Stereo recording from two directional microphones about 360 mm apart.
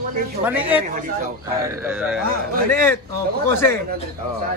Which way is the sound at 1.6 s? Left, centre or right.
Centre.